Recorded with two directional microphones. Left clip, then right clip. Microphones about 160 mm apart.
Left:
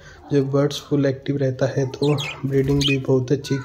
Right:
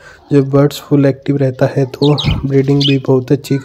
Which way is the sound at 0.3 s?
40° right (ahead or behind).